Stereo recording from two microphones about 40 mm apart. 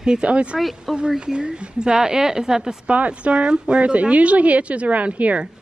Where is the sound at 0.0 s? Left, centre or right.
Centre.